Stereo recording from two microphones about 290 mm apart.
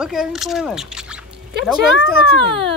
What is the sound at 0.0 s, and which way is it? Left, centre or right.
Speech, centre.